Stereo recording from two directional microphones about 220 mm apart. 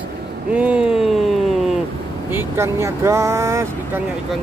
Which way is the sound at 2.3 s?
10° right (ahead or behind).